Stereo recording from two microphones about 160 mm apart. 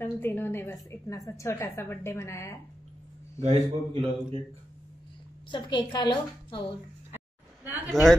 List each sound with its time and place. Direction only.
0.0 s a woman's voice: 15° left (ahead or behind)
3.3 s a man's voice: 40° right (ahead or behind)
5.5 s a woman's voice: 25° left (ahead or behind)
7.6 s a sound: 10° right (ahead or behind)